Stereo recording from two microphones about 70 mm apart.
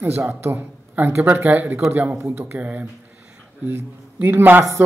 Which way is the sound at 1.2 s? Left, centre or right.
Right.